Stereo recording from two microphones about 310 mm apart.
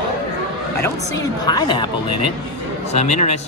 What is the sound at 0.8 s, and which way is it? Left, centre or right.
Speech, centre.